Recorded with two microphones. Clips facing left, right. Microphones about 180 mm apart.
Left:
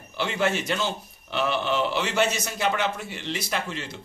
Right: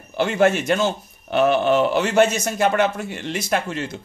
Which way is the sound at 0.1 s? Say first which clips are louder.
Right 8 dB; 50° right (ahead or behind).